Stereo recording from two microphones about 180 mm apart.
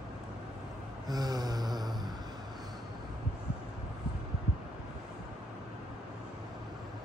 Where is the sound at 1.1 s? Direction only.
20° right (ahead or behind).